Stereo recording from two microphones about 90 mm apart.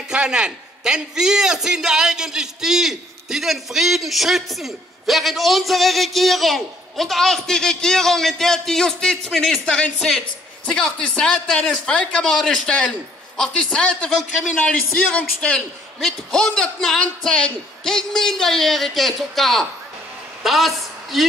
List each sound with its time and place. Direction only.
0.1 s a man's voice: 10° right (ahead or behind)